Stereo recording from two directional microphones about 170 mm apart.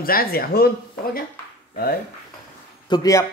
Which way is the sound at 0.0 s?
60° left (ahead or behind).